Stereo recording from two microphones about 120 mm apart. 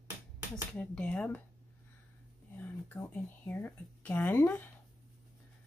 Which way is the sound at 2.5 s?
15° left (ahead or behind).